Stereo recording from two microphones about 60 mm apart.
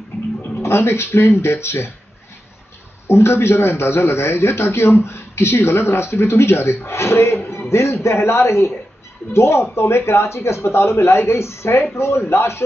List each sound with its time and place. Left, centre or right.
0.6 s a man's voice: left
3.1 s a man's voice: left